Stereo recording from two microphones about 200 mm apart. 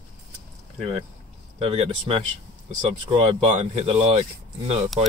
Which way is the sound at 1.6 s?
30° right (ahead or behind).